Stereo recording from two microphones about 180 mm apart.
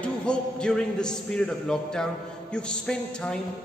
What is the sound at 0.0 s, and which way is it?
A man's voice, 5° left (ahead or behind).